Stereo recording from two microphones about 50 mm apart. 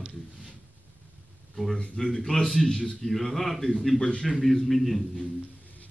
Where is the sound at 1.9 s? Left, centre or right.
Centre.